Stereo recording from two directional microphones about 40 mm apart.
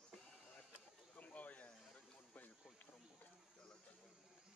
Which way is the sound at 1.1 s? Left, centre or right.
Left.